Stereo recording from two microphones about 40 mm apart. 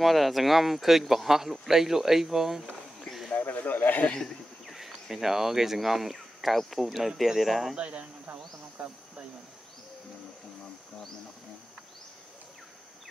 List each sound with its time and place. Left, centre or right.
0.0 s speech: centre
3.3 s a sound: left
4.6 s speech: centre
7.7 s speech: right
8.3 s insect: right